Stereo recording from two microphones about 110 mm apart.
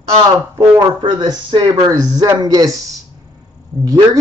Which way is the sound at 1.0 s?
45° right (ahead or behind).